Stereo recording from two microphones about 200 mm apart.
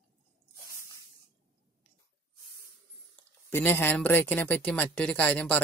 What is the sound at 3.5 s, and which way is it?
Speech, 10° left (ahead or behind).